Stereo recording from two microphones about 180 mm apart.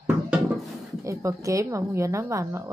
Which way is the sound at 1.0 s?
15° right (ahead or behind).